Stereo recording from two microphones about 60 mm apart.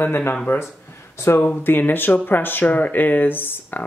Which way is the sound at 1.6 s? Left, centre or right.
Left.